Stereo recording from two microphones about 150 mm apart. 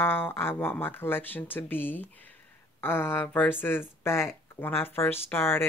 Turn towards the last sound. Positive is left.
turn(degrees=15)  # may be behind; listen again after turning